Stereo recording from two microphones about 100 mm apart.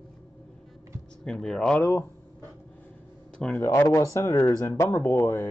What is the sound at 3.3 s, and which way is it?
Speech, 10° left (ahead or behind).